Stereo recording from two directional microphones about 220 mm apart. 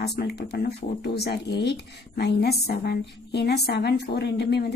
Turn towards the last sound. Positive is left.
turn(degrees=45)  # may be behind; listen again after turning